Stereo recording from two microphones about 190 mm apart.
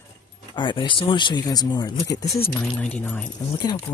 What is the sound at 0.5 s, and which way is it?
Speech, 25° left (ahead or behind).